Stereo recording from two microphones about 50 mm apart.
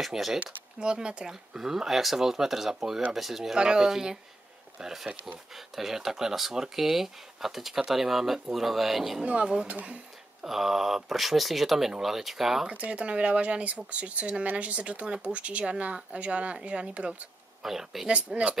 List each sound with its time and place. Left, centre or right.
0.0 s speech: centre
0.7 s speech: centre
3.5 s speech: centre
9.2 s speech: right
10.4 s speech: centre
12.6 s speech: right
17.6 s speech: centre
18.0 s speech: right